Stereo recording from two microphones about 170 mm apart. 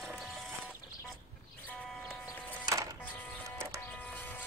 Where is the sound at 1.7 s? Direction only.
10° left (ahead or behind).